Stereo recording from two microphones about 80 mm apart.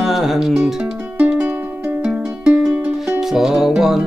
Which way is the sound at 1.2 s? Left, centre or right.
Centre.